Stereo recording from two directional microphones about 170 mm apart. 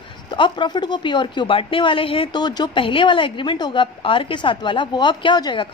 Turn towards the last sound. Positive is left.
turn(degrees=25)  # may be behind; listen again after turning